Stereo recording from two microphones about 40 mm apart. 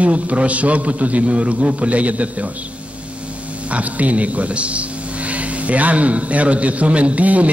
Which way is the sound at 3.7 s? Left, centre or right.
Right.